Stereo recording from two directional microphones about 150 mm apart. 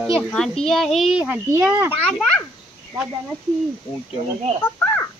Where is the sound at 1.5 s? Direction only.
10° right (ahead or behind).